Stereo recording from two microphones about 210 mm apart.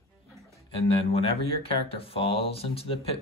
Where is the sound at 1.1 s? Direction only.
25° left (ahead or behind).